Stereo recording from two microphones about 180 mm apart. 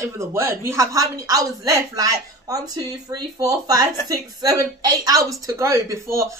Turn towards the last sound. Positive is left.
turn(degrees=-15)  # may be behind; listen again after turning